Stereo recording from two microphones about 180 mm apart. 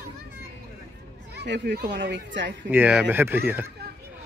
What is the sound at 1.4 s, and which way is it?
Speech, 70° right (ahead or behind).